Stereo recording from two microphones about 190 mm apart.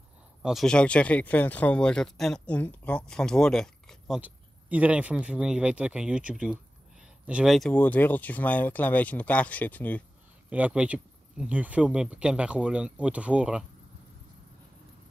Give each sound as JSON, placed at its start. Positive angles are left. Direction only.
{"t": 0.4, "sound": "speech", "side_deg": 0}
{"t": 10.5, "sound": "speech", "side_deg": -5}